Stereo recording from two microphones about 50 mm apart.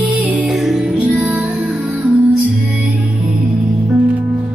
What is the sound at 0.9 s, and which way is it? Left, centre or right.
Music, right.